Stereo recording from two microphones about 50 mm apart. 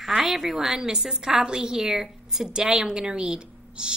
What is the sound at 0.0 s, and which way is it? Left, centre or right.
A woman's voice, centre.